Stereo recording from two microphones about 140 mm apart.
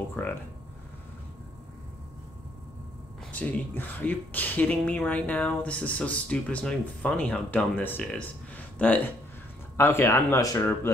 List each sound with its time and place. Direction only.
0.1 s speech: 15° left (ahead or behind)
3.3 s speech: 10° left (ahead or behind)